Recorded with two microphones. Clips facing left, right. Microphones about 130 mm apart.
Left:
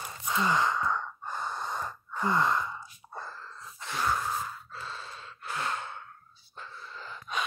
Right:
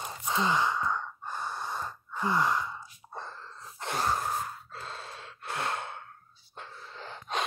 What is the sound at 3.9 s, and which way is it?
Gasp, 40° right (ahead or behind).